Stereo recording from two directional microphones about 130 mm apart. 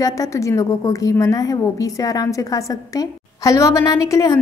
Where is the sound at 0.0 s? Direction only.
25° left (ahead or behind).